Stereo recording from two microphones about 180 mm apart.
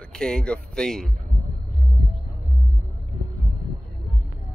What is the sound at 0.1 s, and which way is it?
Speech, 5° left (ahead or behind).